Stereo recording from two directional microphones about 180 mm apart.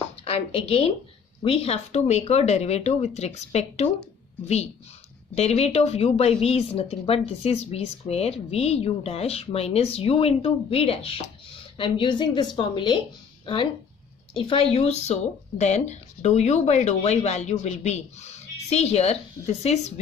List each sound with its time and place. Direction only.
0.2 s a woman's voice: 35° left (ahead or behind)
5.3 s a woman's voice: 35° left (ahead or behind)
14.3 s a woman's voice: 30° left (ahead or behind)